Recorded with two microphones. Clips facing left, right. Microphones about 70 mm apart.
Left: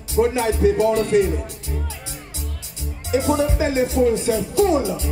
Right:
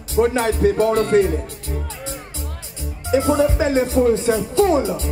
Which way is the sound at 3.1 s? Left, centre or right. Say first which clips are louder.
Right 3 dB; right.